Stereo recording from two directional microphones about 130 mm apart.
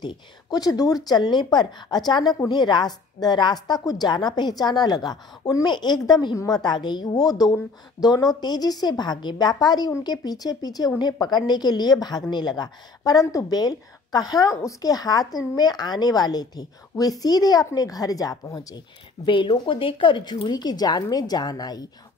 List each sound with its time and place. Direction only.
0.0 s speech: 30° left (ahead or behind)
19.2 s speech: 40° left (ahead or behind)